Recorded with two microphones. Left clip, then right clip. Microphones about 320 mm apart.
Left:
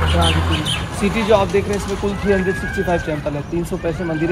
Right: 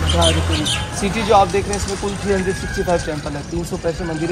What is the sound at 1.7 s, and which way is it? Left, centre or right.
Speech, left.